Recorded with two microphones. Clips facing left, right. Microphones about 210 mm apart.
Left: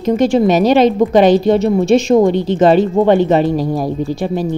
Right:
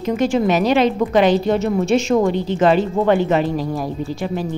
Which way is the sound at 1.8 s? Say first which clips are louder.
Left 5 dB; 15° left (ahead or behind).